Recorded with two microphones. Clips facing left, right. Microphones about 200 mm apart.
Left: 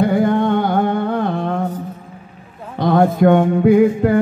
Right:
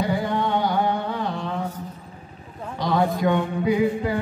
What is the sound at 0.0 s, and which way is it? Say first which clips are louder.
Carnatic music: left 9 dB; 55° left (ahead or behind).